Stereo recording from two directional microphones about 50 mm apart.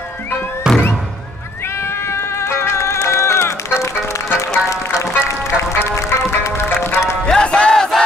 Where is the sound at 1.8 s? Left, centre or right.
Left.